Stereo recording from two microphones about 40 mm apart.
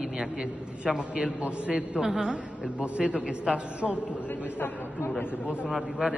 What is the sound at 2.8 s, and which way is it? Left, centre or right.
A man's voice, right.